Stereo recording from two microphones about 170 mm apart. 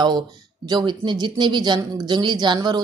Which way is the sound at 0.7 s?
25° right (ahead or behind).